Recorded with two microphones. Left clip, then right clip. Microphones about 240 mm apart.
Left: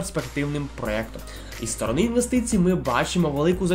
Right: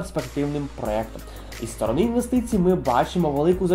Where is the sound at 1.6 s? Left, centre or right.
Left.